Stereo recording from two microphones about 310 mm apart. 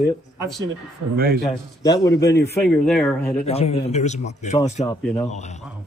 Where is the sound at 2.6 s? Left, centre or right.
Centre.